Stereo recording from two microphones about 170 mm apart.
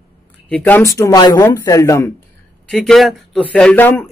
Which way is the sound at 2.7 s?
Centre (ahead or behind).